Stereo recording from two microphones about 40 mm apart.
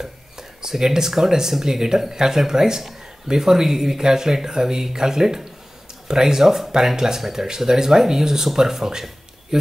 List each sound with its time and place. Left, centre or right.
0.0 s speech: centre